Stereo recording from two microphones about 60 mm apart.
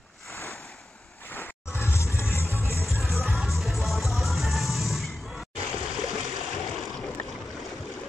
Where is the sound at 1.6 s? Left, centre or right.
Left.